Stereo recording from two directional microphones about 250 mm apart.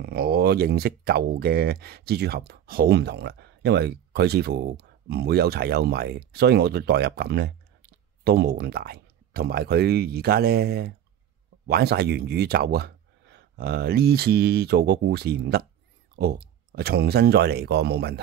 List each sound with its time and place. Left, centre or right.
0.0 s speech: right